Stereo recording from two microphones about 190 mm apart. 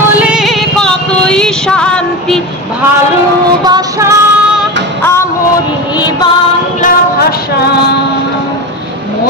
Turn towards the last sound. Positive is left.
turn(degrees=55)  # may be behind; listen again after turning